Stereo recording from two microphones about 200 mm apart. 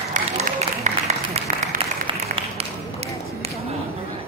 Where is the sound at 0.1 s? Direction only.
35° right (ahead or behind).